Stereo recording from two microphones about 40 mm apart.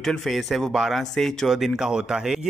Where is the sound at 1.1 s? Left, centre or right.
Centre.